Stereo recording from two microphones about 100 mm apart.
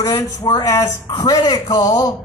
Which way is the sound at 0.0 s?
35° left (ahead or behind).